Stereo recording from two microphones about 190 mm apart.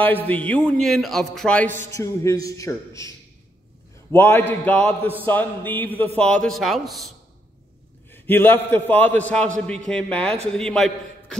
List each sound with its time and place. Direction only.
0.0 s a man's voice: 10° left (ahead or behind)
4.1 s a man's voice: 10° left (ahead or behind)
8.1 s a man's voice: 10° left (ahead or behind)